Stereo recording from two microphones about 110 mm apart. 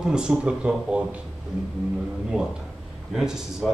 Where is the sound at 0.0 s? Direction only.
5° right (ahead or behind).